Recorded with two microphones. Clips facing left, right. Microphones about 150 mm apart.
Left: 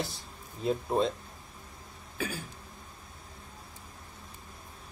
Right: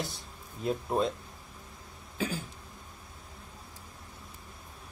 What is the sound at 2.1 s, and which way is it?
Throat clearing, 15° right (ahead or behind).